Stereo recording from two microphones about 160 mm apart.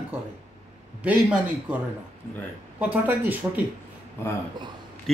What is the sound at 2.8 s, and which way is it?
Speech, 10° right (ahead or behind).